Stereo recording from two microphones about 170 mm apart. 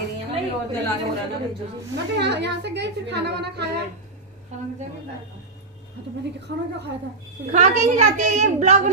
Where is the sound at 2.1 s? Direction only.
90° right.